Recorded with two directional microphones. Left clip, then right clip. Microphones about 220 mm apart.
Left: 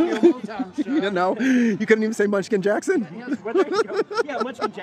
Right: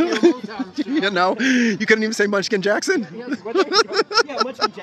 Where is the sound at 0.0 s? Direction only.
5° left (ahead or behind).